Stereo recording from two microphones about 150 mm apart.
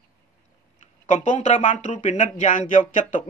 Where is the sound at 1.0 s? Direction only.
55° left (ahead or behind).